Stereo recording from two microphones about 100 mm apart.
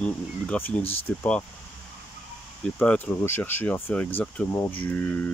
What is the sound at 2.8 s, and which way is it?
Speech, 15° left (ahead or behind).